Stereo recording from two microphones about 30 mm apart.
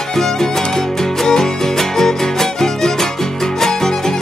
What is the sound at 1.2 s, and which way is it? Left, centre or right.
Music, centre.